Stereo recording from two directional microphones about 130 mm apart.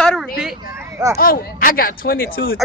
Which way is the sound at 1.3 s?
90° left.